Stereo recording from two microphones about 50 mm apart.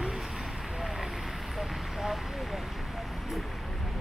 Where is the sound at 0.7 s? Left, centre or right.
Centre.